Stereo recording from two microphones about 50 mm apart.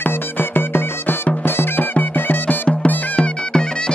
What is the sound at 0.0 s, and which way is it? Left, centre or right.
Music, left.